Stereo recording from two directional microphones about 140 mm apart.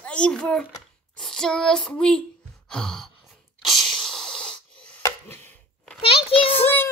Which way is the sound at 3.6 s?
Centre (ahead or behind).